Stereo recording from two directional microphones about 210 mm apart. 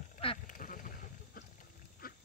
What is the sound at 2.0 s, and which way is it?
Dog, 45° left (ahead or behind).